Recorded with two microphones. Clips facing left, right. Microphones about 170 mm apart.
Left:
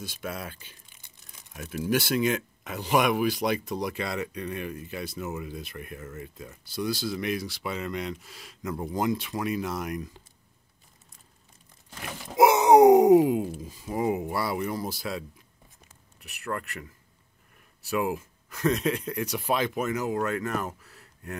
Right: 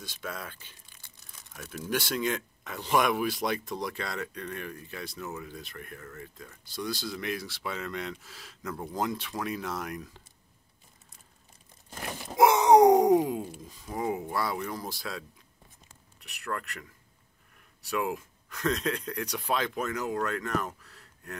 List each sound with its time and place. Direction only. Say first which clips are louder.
0.0 s speech: left 3 dB; 10° left (ahead or behind)
0.9 s crumpling: even; 15° left (ahead or behind)
1.9 s speech: left 5 dB; 10° left (ahead or behind)
12.3 s speech: left 2 dB; 5° left (ahead or behind)
17.8 s speech: left 3 dB; 5° left (ahead or behind)